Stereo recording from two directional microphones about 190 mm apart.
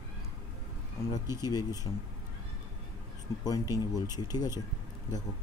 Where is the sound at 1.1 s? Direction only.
20° left (ahead or behind).